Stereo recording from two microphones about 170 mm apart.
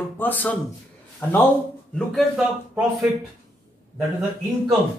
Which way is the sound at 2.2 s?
5° right (ahead or behind).